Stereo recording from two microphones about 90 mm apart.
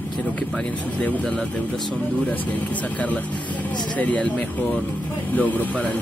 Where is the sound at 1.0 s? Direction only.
15° left (ahead or behind).